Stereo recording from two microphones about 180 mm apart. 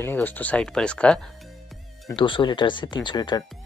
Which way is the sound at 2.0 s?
25° left (ahead or behind).